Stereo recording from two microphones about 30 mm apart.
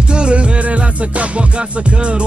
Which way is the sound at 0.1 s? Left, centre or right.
Right.